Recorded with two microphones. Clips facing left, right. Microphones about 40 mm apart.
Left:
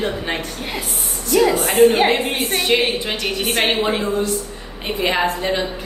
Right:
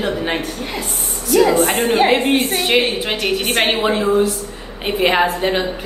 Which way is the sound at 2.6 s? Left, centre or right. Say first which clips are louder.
Right 2 dB; right.